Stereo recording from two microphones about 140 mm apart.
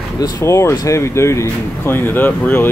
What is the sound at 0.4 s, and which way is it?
Speech, 20° left (ahead or behind).